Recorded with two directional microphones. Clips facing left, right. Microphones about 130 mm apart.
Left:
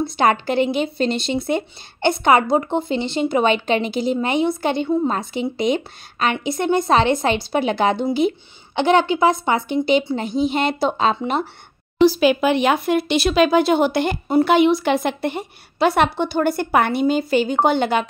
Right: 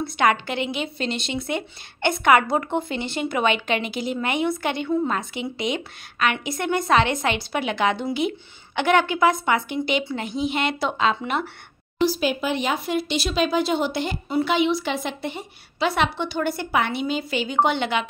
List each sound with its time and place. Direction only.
0.0 s a child's voice: 35° left (ahead or behind)
12.0 s speech: 85° left; by 18.0 s 45° left (ahead or behind)